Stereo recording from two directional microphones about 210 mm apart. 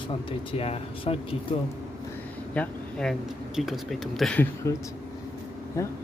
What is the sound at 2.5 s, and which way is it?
Speech, centre (ahead or behind).